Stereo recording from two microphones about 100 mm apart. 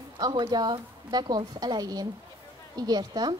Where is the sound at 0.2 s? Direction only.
45° right (ahead or behind).